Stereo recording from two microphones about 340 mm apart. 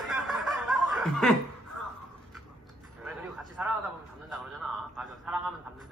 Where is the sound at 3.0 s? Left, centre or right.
Centre.